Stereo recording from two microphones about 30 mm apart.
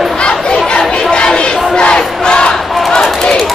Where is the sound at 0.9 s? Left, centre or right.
Left.